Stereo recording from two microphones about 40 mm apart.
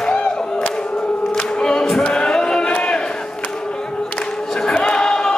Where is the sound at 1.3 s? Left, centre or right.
Left.